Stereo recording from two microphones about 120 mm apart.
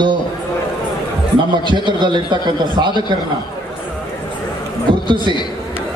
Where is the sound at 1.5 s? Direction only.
40° right (ahead or behind).